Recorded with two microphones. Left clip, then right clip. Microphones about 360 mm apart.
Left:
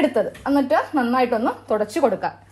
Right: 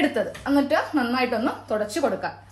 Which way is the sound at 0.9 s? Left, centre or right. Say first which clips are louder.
Left 4 dB; centre.